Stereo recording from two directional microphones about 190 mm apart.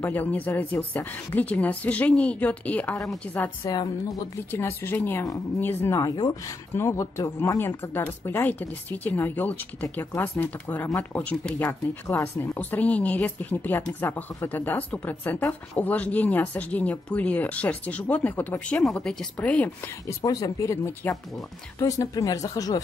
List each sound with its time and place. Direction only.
0.0 s speech: 10° left (ahead or behind)
3.7 s speech: 20° left (ahead or behind)